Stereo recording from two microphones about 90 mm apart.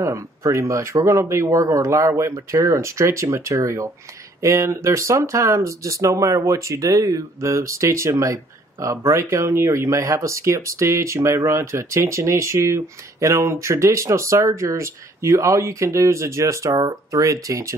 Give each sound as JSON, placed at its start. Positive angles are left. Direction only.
{"t": 0.0, "sound": "speech", "side_deg": -35}